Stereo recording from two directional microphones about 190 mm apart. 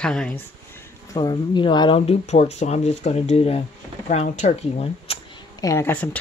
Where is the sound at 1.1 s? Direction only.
25° left (ahead or behind).